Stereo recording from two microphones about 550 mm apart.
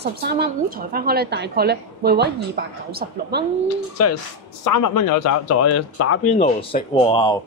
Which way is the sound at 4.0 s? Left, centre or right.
Left.